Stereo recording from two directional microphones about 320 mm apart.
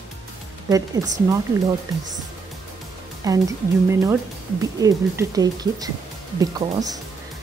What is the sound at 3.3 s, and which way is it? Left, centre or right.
Speech, centre.